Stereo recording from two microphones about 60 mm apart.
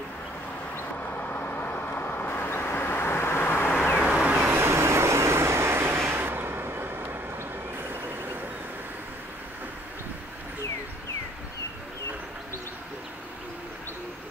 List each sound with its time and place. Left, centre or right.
1.1 s vehicle: left
4.0 s vehicle: centre
4.4 s vehicle: right